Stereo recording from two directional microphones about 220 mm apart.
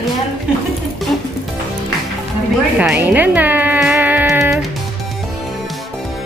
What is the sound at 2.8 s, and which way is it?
Music, 5° right (ahead or behind).